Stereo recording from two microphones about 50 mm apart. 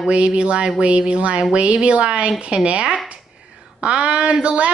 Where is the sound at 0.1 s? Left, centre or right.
Right.